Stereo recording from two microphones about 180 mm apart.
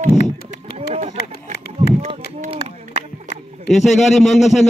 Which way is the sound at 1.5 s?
65° left (ahead or behind).